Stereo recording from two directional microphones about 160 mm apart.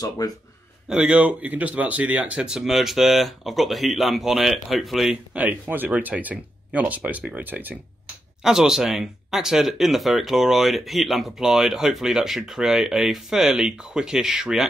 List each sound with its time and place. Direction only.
0.2 s speech: 25° left (ahead or behind)
0.8 s speech: 5° right (ahead or behind)